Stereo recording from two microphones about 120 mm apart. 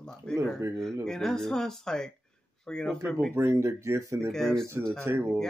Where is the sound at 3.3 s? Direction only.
20° right (ahead or behind).